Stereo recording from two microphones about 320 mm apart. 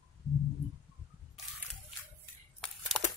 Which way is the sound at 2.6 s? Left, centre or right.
Centre.